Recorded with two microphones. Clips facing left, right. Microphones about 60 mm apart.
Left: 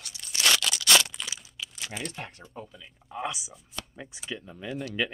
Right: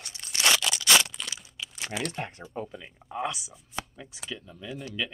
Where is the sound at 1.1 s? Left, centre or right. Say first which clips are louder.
Even; centre.